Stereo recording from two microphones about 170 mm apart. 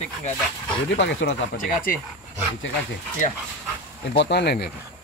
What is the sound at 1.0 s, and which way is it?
Speech, 90° left.